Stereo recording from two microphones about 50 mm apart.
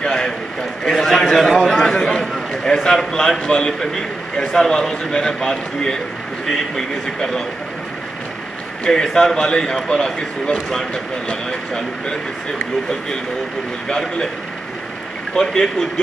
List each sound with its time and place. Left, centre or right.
0.0 s a sound: centre
0.8 s a man's voice: centre
8.8 s a man's voice: centre
13.8 s a man's voice: centre
15.4 s a man's voice: centre